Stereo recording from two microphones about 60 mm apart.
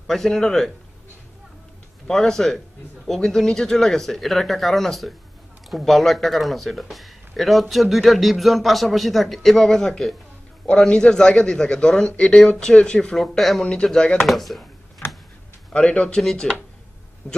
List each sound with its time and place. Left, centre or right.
0.0 s speech: centre
2.0 s speech: centre
13.4 s speech: centre
13.8 s speech: centre
14.2 s speech: centre
15.0 s tick-tock: left
15.7 s speech: centre
17.2 s speech: centre